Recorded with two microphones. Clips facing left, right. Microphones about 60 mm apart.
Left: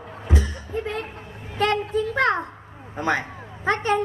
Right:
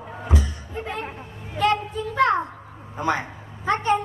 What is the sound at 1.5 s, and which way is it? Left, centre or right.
Speech, left.